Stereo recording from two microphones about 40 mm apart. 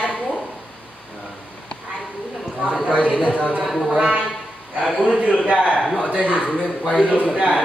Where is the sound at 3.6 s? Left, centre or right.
Centre.